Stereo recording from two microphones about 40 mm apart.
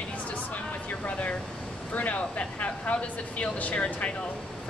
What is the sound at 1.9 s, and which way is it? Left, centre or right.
Speech, left.